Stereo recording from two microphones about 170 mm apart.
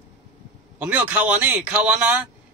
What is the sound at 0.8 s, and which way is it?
A man's voice, 10° right (ahead or behind).